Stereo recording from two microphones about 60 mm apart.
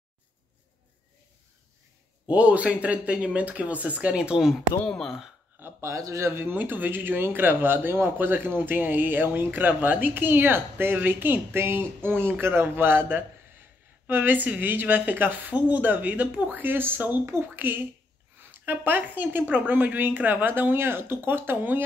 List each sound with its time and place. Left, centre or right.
2.2 s speech: right
4.4 s speech: centre
4.8 s speech: centre
5.6 s speech: right
6.5 s speech: right